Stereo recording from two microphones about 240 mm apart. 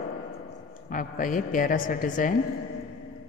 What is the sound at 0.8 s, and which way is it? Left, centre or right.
A man's voice, left.